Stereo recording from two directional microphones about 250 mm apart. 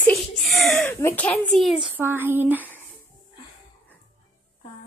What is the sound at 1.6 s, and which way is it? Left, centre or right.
Child singing, centre.